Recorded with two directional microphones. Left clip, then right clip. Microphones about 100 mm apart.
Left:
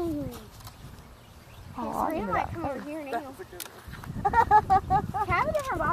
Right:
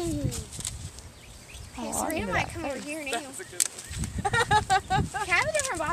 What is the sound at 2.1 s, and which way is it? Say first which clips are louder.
Speech: even; 30° right (ahead or behind).